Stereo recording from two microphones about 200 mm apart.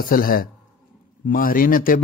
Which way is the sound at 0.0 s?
45° left (ahead or behind).